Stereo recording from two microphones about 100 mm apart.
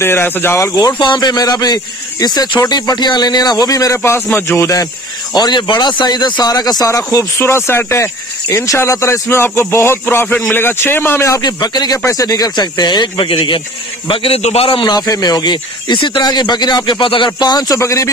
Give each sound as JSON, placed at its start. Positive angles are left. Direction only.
{"t": 0.0, "sound": "speech", "side_deg": 25}
{"t": 1.0, "sound": "speech", "side_deg": 45}
{"t": 5.3, "sound": "speech", "side_deg": 45}
{"t": 11.4, "sound": "speech", "side_deg": 45}
{"t": 14.0, "sound": "a man's voice", "side_deg": 65}
{"t": 14.8, "sound": "speech", "side_deg": 45}
{"t": 17.7, "sound": "speech", "side_deg": 30}